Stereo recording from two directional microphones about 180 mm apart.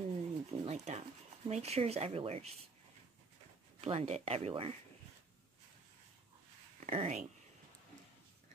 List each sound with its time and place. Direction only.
0.2 s a sound: 35° right (ahead or behind)
1.5 s speech: 35° right (ahead or behind)
3.8 s speech: 35° right (ahead or behind)
6.8 s speech: 40° right (ahead or behind)